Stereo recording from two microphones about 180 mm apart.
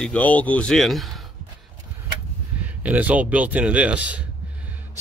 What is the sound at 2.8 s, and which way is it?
Speech, 10° right (ahead or behind).